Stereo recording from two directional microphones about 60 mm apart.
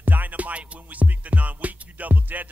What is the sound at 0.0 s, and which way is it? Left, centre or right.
Music, right.